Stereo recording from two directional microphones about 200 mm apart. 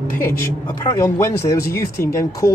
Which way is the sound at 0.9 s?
15° left (ahead or behind).